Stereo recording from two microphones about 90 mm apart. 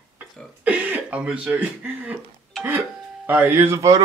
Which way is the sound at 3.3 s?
20° right (ahead or behind).